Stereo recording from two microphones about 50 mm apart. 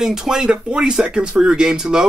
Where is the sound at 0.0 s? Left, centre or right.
Centre.